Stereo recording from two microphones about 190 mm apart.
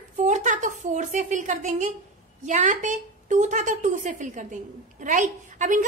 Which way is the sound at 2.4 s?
40° right (ahead or behind).